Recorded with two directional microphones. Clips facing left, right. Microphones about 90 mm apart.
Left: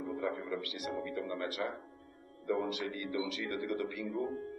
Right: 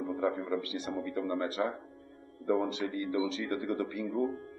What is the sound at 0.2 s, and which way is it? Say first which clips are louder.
Speech: right 7 dB; 30° right (ahead or behind).